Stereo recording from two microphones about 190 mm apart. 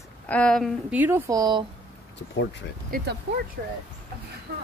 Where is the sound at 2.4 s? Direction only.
65° left (ahead or behind).